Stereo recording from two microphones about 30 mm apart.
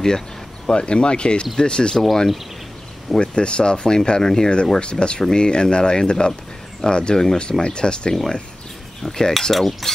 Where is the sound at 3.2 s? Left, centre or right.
Left.